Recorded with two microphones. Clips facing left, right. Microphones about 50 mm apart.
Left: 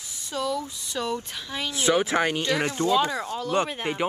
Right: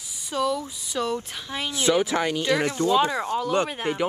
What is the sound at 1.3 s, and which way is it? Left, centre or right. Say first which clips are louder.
Speech: right 1 dB; centre.